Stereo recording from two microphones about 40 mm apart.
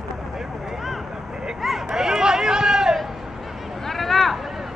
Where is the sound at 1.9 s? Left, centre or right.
Centre.